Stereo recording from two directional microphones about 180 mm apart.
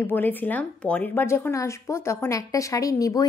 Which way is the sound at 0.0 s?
10° left (ahead or behind).